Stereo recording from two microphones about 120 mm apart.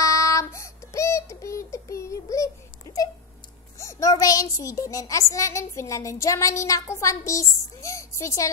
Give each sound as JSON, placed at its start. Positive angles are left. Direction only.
{"t": 0.0, "sound": "child singing", "side_deg": 25}
{"t": 3.7, "sound": "a sound", "side_deg": 25}
{"t": 5.3, "sound": "speech", "side_deg": 25}